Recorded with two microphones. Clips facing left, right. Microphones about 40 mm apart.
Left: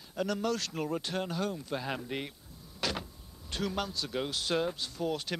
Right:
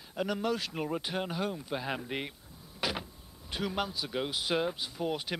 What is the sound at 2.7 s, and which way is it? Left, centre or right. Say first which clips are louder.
Power windows: even; centre.